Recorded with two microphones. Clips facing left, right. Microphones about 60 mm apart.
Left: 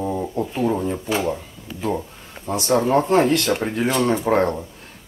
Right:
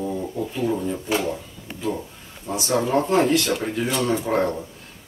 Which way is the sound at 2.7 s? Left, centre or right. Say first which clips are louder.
Left 2 dB; left.